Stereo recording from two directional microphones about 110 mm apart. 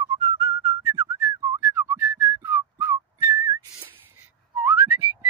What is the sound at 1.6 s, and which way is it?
Whistling, 25° right (ahead or behind).